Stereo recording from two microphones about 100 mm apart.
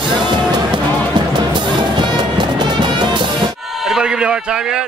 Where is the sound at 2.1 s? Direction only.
45° right (ahead or behind).